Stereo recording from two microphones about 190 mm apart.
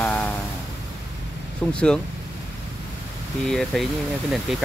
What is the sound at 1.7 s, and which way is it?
Speech, 5° left (ahead or behind).